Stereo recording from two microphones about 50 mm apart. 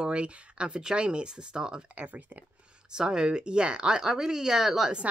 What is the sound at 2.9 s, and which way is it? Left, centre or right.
Speech, centre.